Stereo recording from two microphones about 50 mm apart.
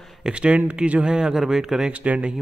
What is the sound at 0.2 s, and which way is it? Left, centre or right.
Speech, right.